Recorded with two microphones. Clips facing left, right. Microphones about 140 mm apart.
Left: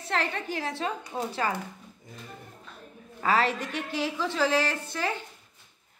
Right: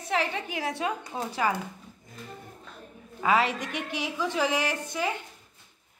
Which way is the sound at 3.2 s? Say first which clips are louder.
Right 1 dB; 10° right (ahead or behind).